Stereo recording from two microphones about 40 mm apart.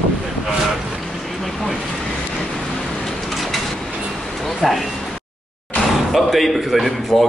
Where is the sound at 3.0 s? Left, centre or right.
Centre.